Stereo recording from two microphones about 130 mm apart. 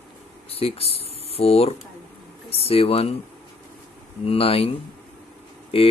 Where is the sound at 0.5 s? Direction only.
50° left (ahead or behind).